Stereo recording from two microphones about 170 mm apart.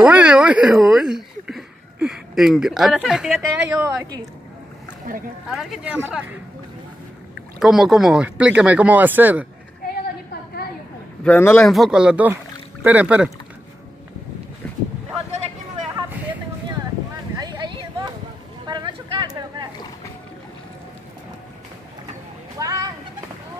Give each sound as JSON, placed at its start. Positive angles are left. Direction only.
{"t": 0.0, "sound": "speech", "side_deg": -5}
{"t": 3.6, "sound": "speech", "side_deg": -15}
{"t": 5.5, "sound": "speech", "side_deg": 0}
{"t": 7.5, "sound": "speech", "side_deg": 0}
{"t": 11.2, "sound": "speech", "side_deg": 10}
{"t": 11.6, "sound": "speech", "side_deg": 0}
{"t": 17.4, "sound": "a sound", "side_deg": -25}
{"t": 22.6, "sound": "a sound", "side_deg": -20}